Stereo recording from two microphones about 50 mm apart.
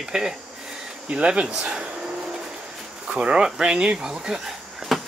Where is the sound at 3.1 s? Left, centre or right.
Centre.